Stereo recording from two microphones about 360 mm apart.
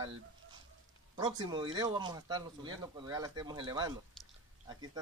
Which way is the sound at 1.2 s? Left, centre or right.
Centre.